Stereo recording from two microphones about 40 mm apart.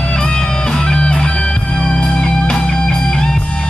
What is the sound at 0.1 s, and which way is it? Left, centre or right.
Music, centre.